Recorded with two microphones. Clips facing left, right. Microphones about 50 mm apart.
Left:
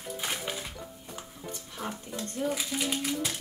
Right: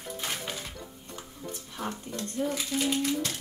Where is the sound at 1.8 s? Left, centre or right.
Centre.